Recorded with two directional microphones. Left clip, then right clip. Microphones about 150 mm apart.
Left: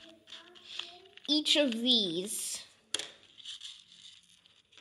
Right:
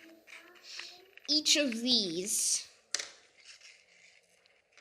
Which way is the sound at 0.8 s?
25° left (ahead or behind).